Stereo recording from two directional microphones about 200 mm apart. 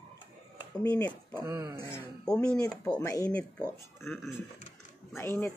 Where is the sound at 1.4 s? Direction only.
15° right (ahead or behind).